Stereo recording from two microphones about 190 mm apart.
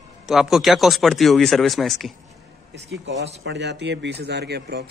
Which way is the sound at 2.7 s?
65° right (ahead or behind).